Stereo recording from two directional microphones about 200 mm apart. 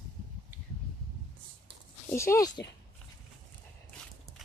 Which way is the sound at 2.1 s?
15° left (ahead or behind).